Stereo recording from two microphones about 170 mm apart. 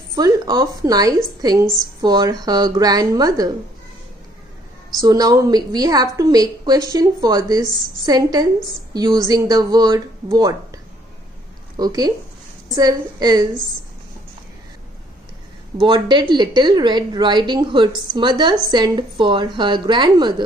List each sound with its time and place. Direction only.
0.1 s a woman's voice: 20° right (ahead or behind)
5.0 s a woman's voice: 20° right (ahead or behind)
15.8 s a woman's voice: 25° right (ahead or behind)